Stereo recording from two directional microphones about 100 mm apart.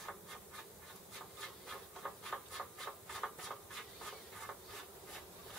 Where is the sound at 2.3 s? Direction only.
5° left (ahead or behind).